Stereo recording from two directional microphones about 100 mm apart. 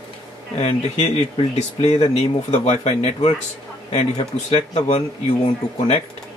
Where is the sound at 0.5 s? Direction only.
90° left.